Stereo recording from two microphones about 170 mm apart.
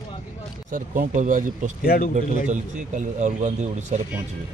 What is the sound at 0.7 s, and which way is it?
Speech, 50° right (ahead or behind).